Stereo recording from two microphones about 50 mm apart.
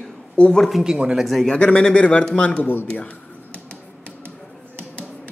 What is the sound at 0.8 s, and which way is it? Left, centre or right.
Speech, centre.